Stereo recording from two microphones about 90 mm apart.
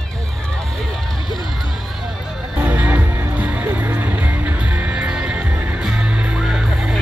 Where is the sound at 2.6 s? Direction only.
20° right (ahead or behind).